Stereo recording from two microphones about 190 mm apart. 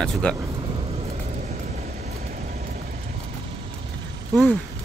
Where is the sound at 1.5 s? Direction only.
40° right (ahead or behind).